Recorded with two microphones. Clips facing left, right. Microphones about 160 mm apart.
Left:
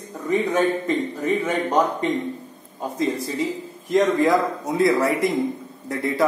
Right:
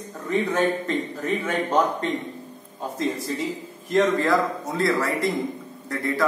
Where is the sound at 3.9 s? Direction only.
15° left (ahead or behind).